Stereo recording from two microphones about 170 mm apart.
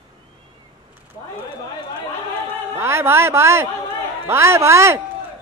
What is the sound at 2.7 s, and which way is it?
A man's voice, 15° right (ahead or behind).